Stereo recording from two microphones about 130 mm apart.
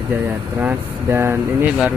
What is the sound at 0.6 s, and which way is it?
Speech, 15° right (ahead or behind).